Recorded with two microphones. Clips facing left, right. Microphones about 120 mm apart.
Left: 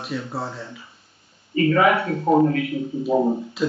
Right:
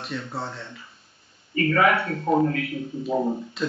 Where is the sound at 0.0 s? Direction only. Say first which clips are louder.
Left 3 dB; centre (ahead or behind).